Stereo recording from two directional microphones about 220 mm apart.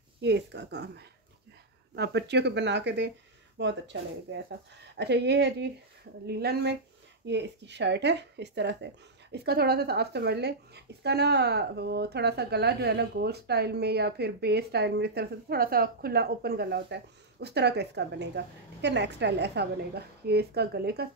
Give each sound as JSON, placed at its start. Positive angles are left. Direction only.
{"t": 0.2, "sound": "speech", "side_deg": -50}